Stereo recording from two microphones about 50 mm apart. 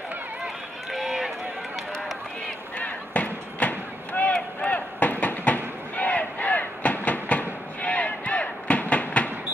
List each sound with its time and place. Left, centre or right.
0.9 s run: centre
2.8 s a sound: left
4.6 s crowd: left